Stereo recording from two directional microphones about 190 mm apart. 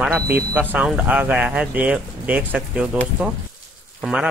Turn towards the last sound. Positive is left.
turn(degrees=-5)  # may be behind; listen again after turning